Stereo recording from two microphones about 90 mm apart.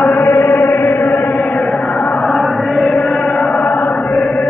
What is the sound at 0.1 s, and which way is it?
Chant, 35° left (ahead or behind).